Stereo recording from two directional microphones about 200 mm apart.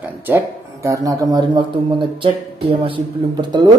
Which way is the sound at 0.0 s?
10° right (ahead or behind).